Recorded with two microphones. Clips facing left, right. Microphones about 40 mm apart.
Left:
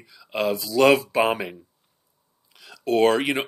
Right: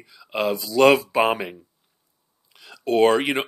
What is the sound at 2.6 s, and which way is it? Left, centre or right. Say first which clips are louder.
Speech: right 1 dB; centre.